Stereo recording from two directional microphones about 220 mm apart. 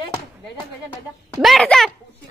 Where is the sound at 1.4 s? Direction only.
Centre (ahead or behind).